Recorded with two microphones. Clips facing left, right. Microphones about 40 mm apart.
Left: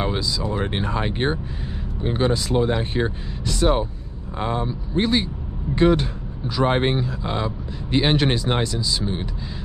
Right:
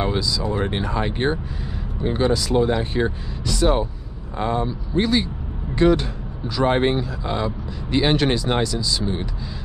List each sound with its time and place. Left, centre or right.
0.7 s speech: left
4.4 s speech: centre
4.9 s speech: left